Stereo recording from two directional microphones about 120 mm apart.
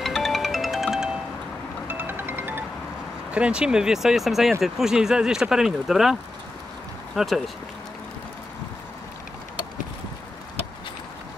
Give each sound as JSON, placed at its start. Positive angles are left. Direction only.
{"t": 0.0, "sound": "music", "side_deg": 0}
{"t": 1.9, "sound": "music", "side_deg": -15}
{"t": 3.3, "sound": "speech", "side_deg": -10}
{"t": 7.2, "sound": "speech", "side_deg": 0}